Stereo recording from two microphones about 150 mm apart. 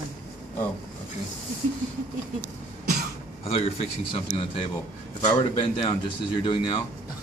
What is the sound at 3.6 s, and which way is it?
Speech, 40° left (ahead or behind).